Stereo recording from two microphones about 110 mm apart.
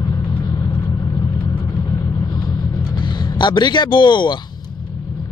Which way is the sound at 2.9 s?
45° left (ahead or behind).